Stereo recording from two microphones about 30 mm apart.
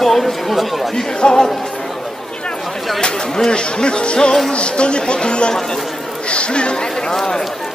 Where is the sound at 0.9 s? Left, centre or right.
Left.